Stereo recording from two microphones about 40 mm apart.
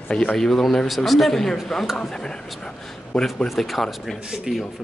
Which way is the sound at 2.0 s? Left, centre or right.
Centre.